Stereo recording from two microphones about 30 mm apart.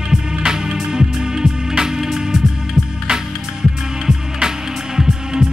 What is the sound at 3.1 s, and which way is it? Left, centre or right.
Music, right.